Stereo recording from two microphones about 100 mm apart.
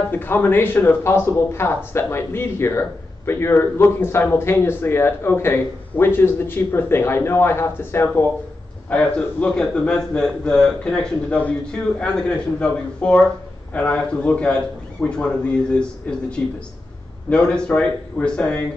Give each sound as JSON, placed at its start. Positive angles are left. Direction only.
{"t": 0.1, "sound": "speech", "side_deg": 20}
{"t": 8.8, "sound": "a man's voice", "side_deg": 10}